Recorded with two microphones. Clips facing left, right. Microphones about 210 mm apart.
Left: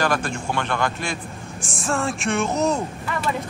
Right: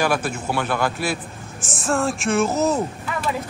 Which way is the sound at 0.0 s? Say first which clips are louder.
Right 1 dB; 10° right (ahead or behind).